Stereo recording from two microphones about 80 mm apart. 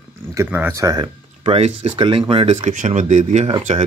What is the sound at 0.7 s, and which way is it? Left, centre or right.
Speech, right.